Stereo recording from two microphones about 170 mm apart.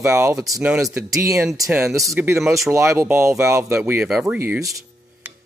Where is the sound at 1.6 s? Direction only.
15° right (ahead or behind).